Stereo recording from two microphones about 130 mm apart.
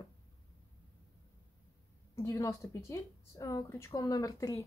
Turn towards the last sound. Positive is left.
turn(degrees=25)  # may be behind; listen again after turning